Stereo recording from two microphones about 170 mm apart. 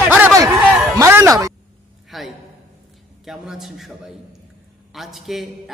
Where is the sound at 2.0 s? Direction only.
Centre (ahead or behind).